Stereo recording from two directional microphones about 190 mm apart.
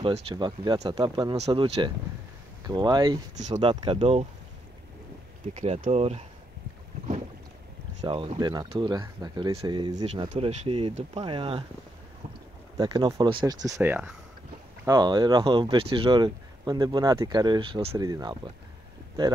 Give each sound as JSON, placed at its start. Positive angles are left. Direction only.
{"t": 0.0, "sound": "speech", "side_deg": -30}
{"t": 3.4, "sound": "speech", "side_deg": -35}
{"t": 5.5, "sound": "speech", "side_deg": -35}
{"t": 8.0, "sound": "speech", "side_deg": -25}
{"t": 10.3, "sound": "speech", "side_deg": -35}
{"t": 12.7, "sound": "speech", "side_deg": -20}
{"t": 14.9, "sound": "speech", "side_deg": -20}